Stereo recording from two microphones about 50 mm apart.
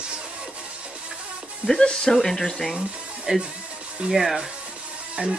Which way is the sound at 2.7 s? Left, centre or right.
Centre.